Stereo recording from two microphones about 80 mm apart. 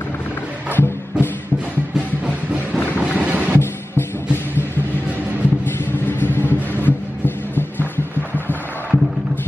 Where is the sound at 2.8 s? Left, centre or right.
Left.